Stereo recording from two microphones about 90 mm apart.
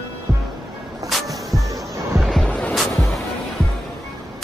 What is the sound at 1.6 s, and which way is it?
Music, 40° right (ahead or behind).